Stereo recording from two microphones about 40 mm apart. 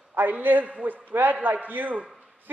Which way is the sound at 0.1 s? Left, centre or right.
Right.